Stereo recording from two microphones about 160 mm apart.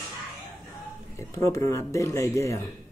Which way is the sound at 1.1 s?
20° left (ahead or behind).